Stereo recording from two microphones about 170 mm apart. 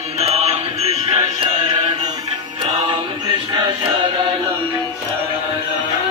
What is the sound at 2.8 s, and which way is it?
Music, 25° right (ahead or behind).